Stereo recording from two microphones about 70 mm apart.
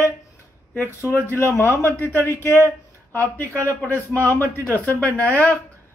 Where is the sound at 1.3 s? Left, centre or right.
Left.